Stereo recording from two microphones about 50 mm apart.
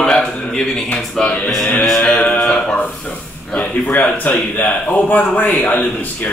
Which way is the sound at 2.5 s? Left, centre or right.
Left.